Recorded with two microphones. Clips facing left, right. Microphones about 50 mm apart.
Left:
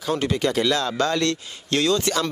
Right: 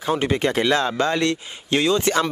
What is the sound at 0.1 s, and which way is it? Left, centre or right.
Speech, right.